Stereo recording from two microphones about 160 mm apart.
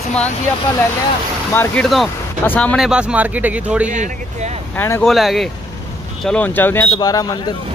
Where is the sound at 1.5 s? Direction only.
15° left (ahead or behind).